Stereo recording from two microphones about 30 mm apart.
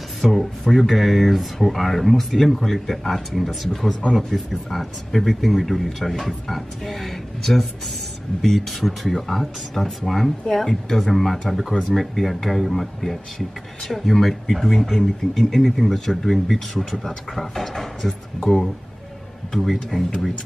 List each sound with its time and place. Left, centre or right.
0.2 s speech: centre
4.0 s speech: left
4.6 s speech: centre
11.2 s speech: centre
19.5 s speech: centre